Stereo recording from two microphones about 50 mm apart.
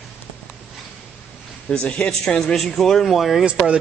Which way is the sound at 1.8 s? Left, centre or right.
Left.